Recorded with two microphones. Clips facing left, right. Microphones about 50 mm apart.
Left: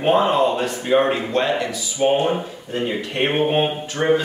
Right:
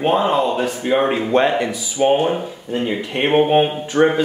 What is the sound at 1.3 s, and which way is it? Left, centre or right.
Speech, right.